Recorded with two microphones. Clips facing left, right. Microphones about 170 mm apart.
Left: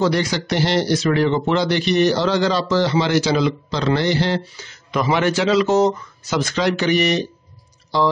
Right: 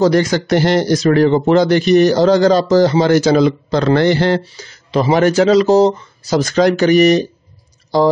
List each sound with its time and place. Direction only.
0.0 s speech: 45° right (ahead or behind)
4.6 s speech: 35° right (ahead or behind)